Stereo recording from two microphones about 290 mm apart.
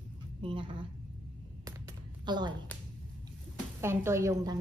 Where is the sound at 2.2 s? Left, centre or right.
Centre.